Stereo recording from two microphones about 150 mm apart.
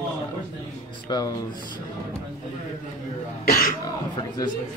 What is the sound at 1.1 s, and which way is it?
Speech, 25° left (ahead or behind).